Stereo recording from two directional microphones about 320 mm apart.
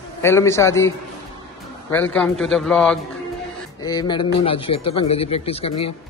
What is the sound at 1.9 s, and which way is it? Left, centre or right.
Speech, centre.